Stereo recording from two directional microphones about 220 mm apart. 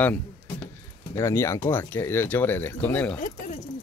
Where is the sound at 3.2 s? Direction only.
35° left (ahead or behind).